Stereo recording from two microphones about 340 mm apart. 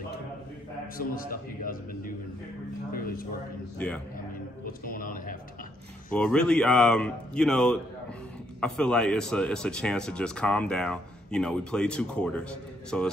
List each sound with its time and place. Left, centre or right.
0.9 s a man's voice: left
3.7 s speech: centre
4.6 s a man's voice: left
6.1 s speech: centre